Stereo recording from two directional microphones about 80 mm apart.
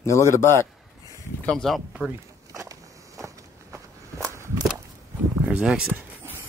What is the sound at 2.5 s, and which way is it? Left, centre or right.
Walk, right.